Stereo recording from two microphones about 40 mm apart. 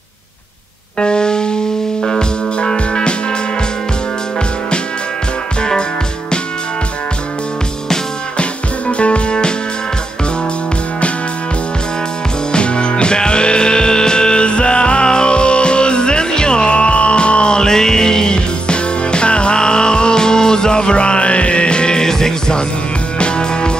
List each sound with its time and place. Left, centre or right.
0.9 s music: left
5.6 s music: left
8.4 s music: left
12.5 s music: left